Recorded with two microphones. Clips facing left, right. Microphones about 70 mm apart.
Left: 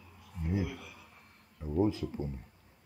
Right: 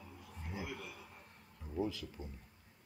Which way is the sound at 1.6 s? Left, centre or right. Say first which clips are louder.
Left 10 dB; left.